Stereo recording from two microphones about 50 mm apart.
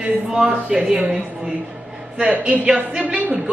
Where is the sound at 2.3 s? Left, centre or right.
Right.